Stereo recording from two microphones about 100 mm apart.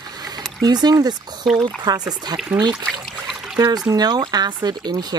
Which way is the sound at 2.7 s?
Centre (ahead or behind).